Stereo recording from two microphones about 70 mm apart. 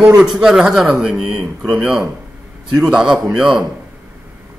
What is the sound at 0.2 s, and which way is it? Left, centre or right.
A man's voice, centre.